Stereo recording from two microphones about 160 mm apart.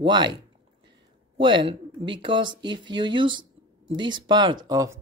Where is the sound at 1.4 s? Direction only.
30° right (ahead or behind).